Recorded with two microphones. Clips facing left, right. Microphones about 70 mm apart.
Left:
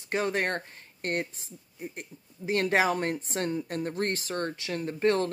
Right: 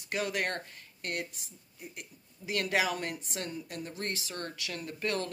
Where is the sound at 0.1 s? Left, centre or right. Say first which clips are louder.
Left 5 dB; left.